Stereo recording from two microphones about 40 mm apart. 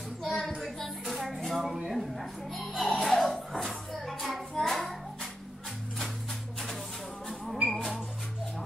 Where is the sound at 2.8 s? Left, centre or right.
Centre.